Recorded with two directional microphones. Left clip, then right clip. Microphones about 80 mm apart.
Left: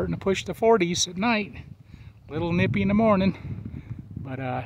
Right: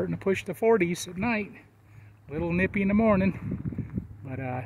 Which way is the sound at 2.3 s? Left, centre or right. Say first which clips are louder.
Left 2 dB; left.